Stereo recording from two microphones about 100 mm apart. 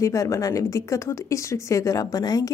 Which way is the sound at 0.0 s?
35° left (ahead or behind).